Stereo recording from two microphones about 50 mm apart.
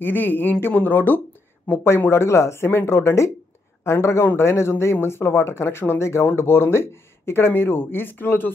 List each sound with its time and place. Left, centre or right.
0.0 s speech: left
2.0 s speech: left
6.2 s speech: left